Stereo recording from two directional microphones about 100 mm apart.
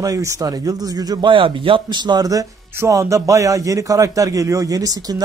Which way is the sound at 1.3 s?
55° right (ahead or behind).